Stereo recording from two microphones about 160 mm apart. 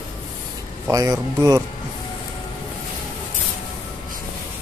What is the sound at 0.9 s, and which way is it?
Speech, 20° right (ahead or behind).